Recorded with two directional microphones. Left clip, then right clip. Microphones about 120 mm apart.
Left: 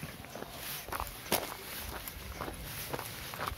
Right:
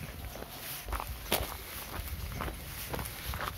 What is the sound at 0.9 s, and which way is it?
Walk, 10° left (ahead or behind).